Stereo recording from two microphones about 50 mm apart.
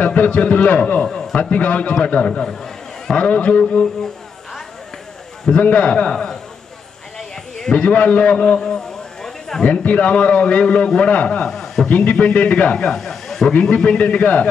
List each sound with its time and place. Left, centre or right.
0.0 s a man's voice: left
1.0 s a man's voice: centre
1.3 s a man's voice: left
3.2 s a man's voice: left
5.5 s a man's voice: left
7.2 s a sound: centre
7.8 s a man's voice: left
8.5 s a sound: centre
9.6 s a man's voice: left; by 11.9 s centre
12.0 s a man's voice: centre
12.7 s a man's voice: centre; by 14.5 s left